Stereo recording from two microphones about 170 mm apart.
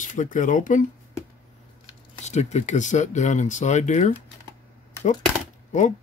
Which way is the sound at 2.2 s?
40° left (ahead or behind).